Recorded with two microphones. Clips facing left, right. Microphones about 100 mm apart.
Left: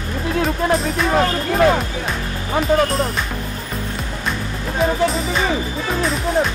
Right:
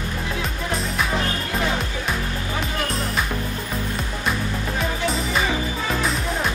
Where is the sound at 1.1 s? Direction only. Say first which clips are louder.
Left 8 dB; 60° left (ahead or behind).